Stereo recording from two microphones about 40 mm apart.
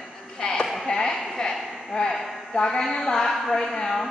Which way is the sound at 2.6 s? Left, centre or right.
Centre.